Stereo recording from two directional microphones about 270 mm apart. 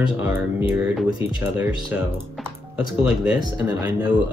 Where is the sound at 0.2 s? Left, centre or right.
Centre.